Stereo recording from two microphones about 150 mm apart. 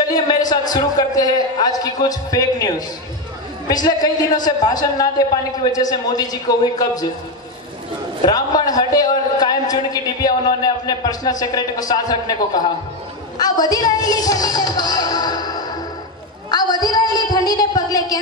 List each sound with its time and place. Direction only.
0.1 s a man's voice: 25° left (ahead or behind)
3.7 s a man's voice: 25° left (ahead or behind)
8.3 s a man's voice: 25° left (ahead or behind)
13.4 s music: 25° left (ahead or behind)
16.4 s a woman's voice: 25° left (ahead or behind)